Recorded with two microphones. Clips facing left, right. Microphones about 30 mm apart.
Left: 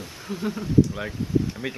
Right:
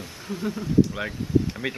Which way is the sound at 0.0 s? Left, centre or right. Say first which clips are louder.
Even; centre.